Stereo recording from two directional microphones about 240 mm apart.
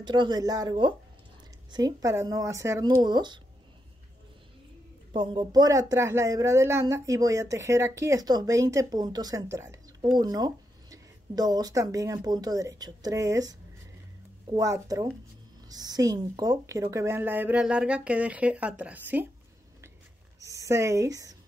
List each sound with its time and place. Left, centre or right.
0.0 s speech: centre
5.1 s speech: centre
20.3 s speech: centre